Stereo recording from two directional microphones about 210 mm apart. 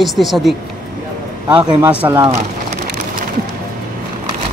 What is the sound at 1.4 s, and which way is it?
Speech, 20° right (ahead or behind).